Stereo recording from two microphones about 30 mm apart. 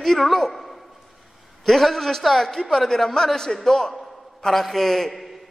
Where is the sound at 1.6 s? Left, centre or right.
Centre.